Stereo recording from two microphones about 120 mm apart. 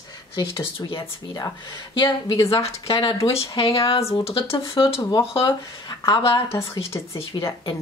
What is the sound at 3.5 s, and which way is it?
Speech, 45° left (ahead or behind).